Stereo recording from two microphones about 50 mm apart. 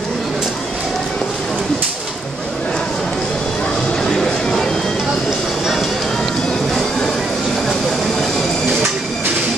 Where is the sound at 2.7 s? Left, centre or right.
Centre.